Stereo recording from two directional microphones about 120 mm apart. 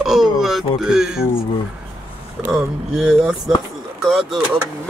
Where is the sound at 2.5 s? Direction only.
5° right (ahead or behind).